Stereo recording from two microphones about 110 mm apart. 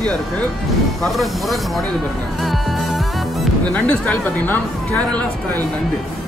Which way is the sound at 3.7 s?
10° left (ahead or behind).